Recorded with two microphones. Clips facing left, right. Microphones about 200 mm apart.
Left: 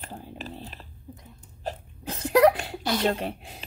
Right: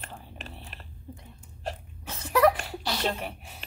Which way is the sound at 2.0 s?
35° left (ahead or behind).